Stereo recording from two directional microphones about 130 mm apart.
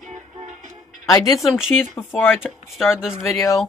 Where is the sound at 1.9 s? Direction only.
15° left (ahead or behind).